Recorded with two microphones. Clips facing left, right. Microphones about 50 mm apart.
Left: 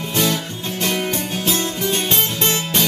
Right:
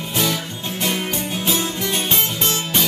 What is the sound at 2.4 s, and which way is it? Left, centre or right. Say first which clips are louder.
Music: left 2 dB; left.